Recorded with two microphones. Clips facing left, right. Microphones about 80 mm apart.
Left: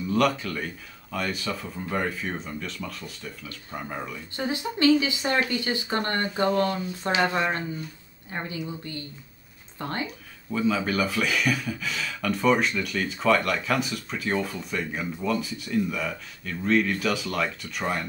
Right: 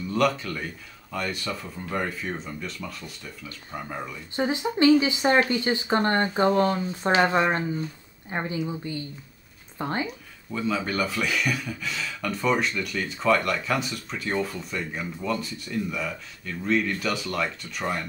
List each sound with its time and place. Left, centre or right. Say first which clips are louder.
0.1 s speech: even; centre
4.4 s speech: right 3 dB; right
10.5 s speech: left 2 dB; centre